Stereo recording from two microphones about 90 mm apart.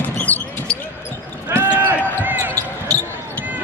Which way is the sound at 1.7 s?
20° right (ahead or behind).